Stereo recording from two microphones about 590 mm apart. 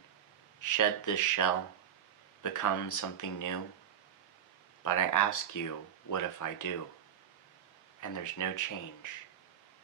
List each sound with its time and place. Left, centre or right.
0.6 s speech: left
4.8 s speech: left
8.0 s speech: left